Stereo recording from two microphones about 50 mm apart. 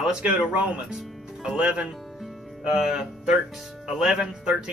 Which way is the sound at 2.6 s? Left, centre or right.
Centre.